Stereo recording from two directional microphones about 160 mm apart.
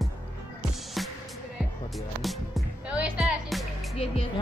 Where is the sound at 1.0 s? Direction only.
Centre (ahead or behind).